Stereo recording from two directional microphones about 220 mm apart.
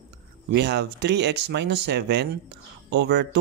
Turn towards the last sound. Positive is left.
turn(degrees=-50)  # may be behind; listen again after turning